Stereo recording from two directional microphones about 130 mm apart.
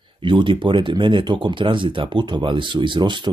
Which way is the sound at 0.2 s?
40° right (ahead or behind).